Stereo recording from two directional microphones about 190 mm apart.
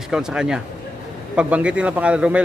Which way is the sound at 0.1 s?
5° right (ahead or behind).